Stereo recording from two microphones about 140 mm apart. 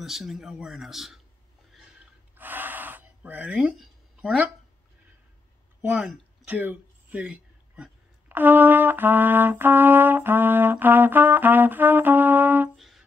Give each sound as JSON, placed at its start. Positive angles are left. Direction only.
{"t": 0.0, "sound": "speech", "side_deg": 0}
{"t": 2.3, "sound": "gasp", "side_deg": -15}
{"t": 5.8, "sound": "speech", "side_deg": -10}
{"t": 12.7, "sound": "music", "side_deg": 0}